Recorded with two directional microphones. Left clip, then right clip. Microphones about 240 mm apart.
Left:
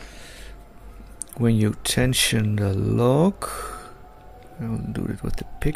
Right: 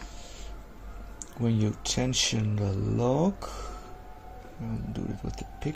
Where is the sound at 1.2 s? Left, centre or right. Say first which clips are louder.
Left 7 dB; left.